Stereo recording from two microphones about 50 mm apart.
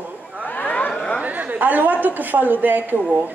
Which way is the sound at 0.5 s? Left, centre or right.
Left.